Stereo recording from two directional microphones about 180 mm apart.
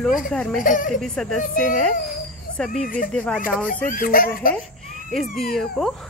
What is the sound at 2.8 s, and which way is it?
Speech, 50° left (ahead or behind).